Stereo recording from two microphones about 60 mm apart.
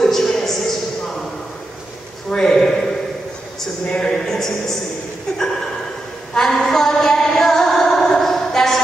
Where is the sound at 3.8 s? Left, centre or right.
Centre.